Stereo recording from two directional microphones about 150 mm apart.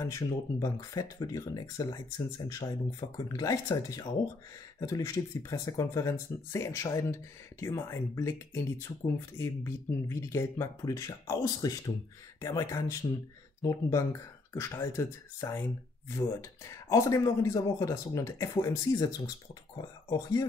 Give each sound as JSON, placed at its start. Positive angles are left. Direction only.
{"t": 0.0, "sound": "speech", "side_deg": 20}